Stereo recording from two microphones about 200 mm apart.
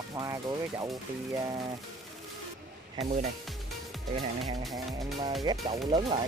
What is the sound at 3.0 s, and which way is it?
Speech, 30° right (ahead or behind).